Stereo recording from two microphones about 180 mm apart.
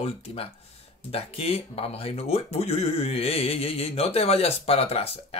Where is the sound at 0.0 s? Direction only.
35° left (ahead or behind).